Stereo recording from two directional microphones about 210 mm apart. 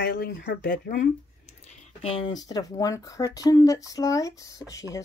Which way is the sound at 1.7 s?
35° left (ahead or behind).